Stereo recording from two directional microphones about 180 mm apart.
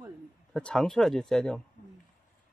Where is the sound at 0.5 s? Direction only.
5° left (ahead or behind).